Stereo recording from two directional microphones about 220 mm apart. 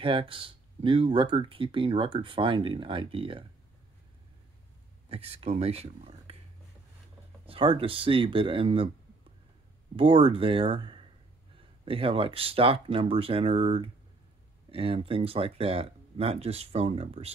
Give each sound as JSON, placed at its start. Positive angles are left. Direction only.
{"t": 0.0, "sound": "speech", "side_deg": -25}
{"t": 5.1, "sound": "speech", "side_deg": -25}
{"t": 7.4, "sound": "speech", "side_deg": -25}
{"t": 9.9, "sound": "speech", "side_deg": -25}